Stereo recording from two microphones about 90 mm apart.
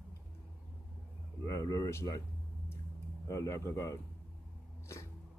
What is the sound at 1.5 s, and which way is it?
Speech, 40° left (ahead or behind).